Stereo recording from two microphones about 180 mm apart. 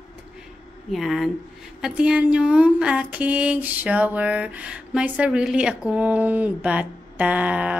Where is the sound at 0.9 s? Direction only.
Centre (ahead or behind).